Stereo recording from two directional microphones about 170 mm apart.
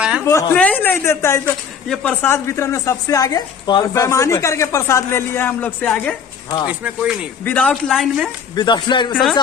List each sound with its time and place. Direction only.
0.2 s a woman's voice: 15° left (ahead or behind)
6.7 s speech: 10° right (ahead or behind)
7.4 s a man's voice: 10° left (ahead or behind)
8.5 s music: 25° left (ahead or behind)
9.1 s a man's voice: centre (ahead or behind)